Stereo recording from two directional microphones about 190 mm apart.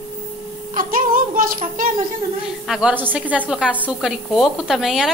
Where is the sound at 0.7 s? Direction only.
45° right (ahead or behind).